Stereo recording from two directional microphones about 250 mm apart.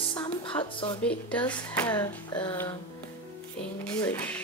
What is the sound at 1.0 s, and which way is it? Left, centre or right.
Speech, centre.